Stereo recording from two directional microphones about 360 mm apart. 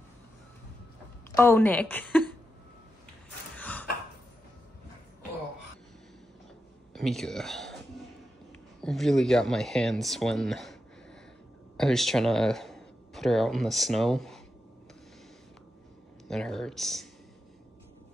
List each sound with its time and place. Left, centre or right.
1.3 s a woman's voice: centre
3.5 s a sound: centre
6.9 s speech: centre
8.8 s speech: centre
16.3 s speech: centre